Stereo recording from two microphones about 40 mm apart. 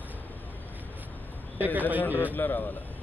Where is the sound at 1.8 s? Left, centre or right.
Right.